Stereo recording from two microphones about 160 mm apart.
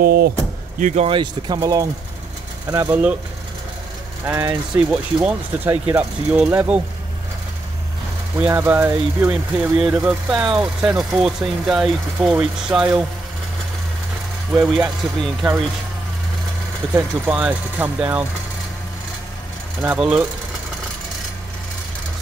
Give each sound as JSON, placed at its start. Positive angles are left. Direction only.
{"t": 0.0, "sound": "speech", "side_deg": -70}
{"t": 0.7, "sound": "speech", "side_deg": -50}
{"t": 1.0, "sound": "speech", "side_deg": -30}
{"t": 4.7, "sound": "speech", "side_deg": -10}
{"t": 8.4, "sound": "speech", "side_deg": -10}
{"t": 14.5, "sound": "speech", "side_deg": -5}
{"t": 17.3, "sound": "speech", "side_deg": -10}
{"t": 19.8, "sound": "speech", "side_deg": -5}